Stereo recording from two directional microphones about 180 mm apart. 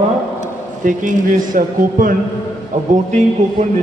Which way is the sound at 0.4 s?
45° right (ahead or behind).